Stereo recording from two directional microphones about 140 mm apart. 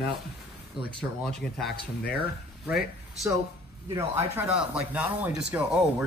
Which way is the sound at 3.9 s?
20° right (ahead or behind).